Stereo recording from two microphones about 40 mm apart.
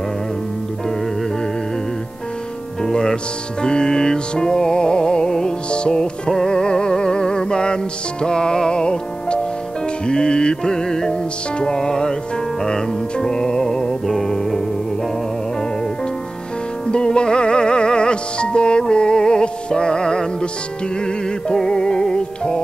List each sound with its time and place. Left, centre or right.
2.8 s music: centre
14.0 s music: centre
16.9 s music: left
21.6 s music: centre